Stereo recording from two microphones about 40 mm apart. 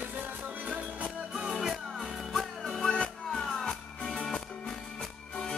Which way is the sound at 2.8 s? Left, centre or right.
Left.